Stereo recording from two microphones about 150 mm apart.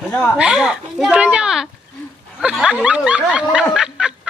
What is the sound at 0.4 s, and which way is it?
Speech, 5° right (ahead or behind).